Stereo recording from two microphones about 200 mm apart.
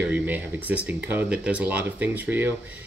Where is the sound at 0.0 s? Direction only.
10° right (ahead or behind).